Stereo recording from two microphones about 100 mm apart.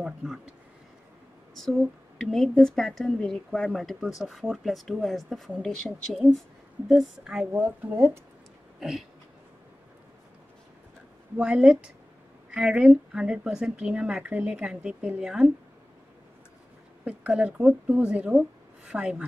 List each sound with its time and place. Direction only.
0.0 s a woman's voice: 5° right (ahead or behind)
1.6 s a woman's voice: 5° left (ahead or behind)
7.5 s speech: 20° right (ahead or behind)
8.7 s a sound: 5° right (ahead or behind)
11.3 s speech: 10° right (ahead or behind)
17.0 s speech: 10° right (ahead or behind)